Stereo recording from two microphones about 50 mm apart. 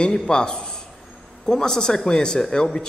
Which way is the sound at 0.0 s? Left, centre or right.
Centre.